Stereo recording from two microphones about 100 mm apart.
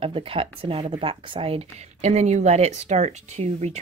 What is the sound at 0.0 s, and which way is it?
Speech, 65° right (ahead or behind).